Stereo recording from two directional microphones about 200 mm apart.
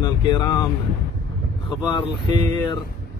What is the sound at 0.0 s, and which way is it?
Speech, 20° left (ahead or behind).